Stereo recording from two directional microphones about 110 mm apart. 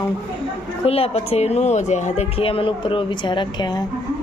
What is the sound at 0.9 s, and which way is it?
Speech, 65° left (ahead or behind).